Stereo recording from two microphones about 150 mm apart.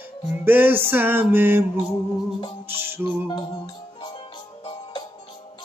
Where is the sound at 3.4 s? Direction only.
30° left (ahead or behind).